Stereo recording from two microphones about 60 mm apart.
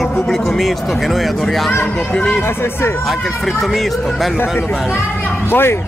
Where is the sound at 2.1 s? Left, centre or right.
Centre.